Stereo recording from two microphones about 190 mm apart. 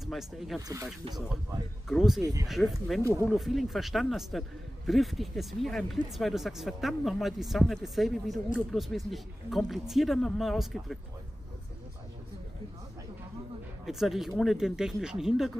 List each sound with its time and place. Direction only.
0.0 s a man's voice: centre (ahead or behind)
0.6 s speech: 20° right (ahead or behind)
1.9 s a man's voice: centre (ahead or behind)
13.8 s a man's voice: centre (ahead or behind)